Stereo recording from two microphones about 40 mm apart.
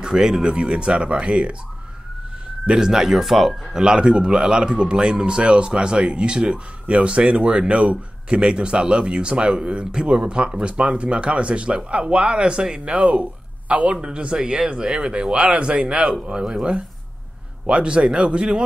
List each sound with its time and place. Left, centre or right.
0.0 s speech: centre
0.4 s speech: right
2.6 s speech: centre
3.8 s speech: right
12.9 s speech: right
14.0 s speech: right
17.6 s speech: right